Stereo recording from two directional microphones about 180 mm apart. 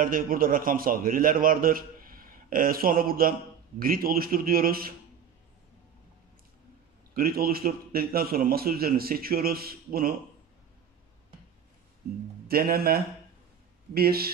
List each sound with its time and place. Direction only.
0.0 s a man's voice: 50° right (ahead or behind)
7.2 s a man's voice: 55° right (ahead or behind)
12.4 s a man's voice: 55° right (ahead or behind)